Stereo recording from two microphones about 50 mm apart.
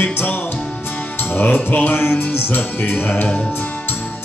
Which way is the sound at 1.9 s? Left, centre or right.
Left.